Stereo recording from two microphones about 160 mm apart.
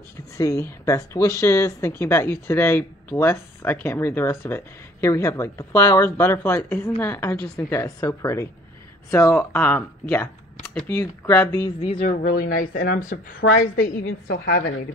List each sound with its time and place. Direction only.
0.4 s a woman's voice: 20° left (ahead or behind)
10.6 s a sound: 5° left (ahead or behind)
10.9 s speech: 20° left (ahead or behind)
11.8 s speech: 35° left (ahead or behind)
12.2 s a woman's voice: 65° left (ahead or behind); by 14.6 s 80° left